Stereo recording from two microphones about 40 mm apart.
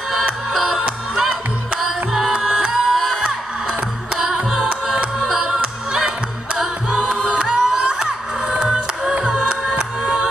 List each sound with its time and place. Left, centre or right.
0.5 s music: centre
1.8 s music: centre
5.3 s music: centre